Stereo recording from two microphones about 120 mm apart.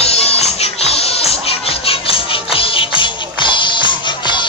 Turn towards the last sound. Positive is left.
turn(degrees=40)  # may be behind; listen again after turning